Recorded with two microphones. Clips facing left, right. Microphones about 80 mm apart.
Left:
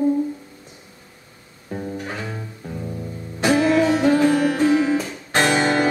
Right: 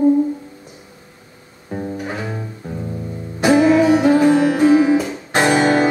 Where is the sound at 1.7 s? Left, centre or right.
Centre.